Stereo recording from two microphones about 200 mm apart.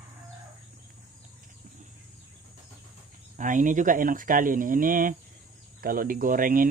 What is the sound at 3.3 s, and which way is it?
Speech, 40° right (ahead or behind).